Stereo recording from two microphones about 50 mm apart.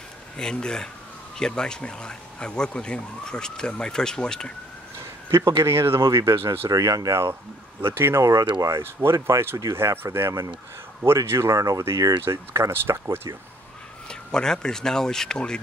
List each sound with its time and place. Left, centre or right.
0.4 s speech: centre
5.3 s speech: right
7.1 s speech: right
7.8 s speech: right
8.2 s speech: right
9.8 s speech: right
14.0 s speech: centre